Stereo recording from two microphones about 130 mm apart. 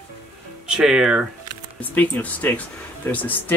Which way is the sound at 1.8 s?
10° left (ahead or behind).